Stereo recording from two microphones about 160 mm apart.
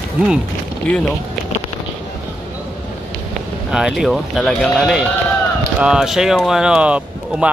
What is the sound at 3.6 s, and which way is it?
Speech, 5° right (ahead or behind).